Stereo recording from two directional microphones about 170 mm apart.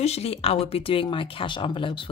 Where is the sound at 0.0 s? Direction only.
40° left (ahead or behind).